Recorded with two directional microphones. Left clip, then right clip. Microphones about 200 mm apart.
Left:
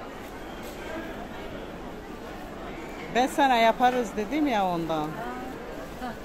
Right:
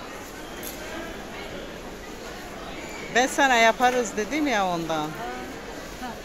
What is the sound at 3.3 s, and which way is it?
Speech, centre (ahead or behind).